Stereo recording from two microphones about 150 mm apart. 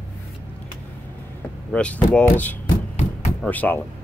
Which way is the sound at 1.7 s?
5° left (ahead or behind).